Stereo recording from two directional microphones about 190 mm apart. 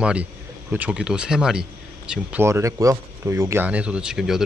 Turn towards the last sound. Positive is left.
turn(degrees=0)  # may be behind; listen again after turning